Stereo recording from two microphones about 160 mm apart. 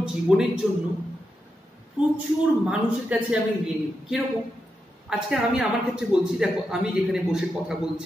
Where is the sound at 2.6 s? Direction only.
5° right (ahead or behind).